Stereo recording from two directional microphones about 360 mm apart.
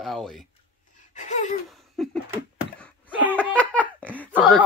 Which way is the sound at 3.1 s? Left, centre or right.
Centre.